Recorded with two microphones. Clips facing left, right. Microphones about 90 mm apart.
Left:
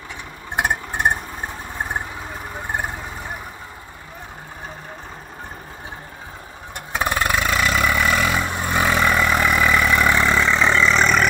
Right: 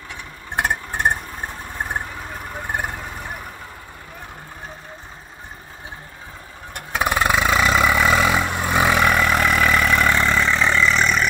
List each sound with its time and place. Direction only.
0.6 s a sound: 5° left (ahead or behind)
1.8 s vehicle: 5° left (ahead or behind)
6.7 s vehicle: 5° right (ahead or behind); by 11.1 s 30° left (ahead or behind)